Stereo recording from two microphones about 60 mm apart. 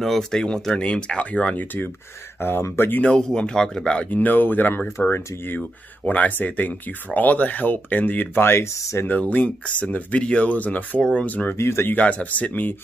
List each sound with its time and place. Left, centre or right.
0.0 s speech: centre; by 1.9 s left
2.6 s speech: left
3.1 s speech: centre; by 5.6 s left
6.0 s speech: left
9.0 s speech: left
11.0 s speech: centre
11.2 s speech: left
11.5 s speech: left
11.9 s speech: left